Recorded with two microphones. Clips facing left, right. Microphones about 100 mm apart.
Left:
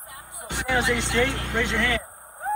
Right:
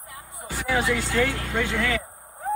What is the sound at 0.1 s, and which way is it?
Vehicle, 20° left (ahead or behind).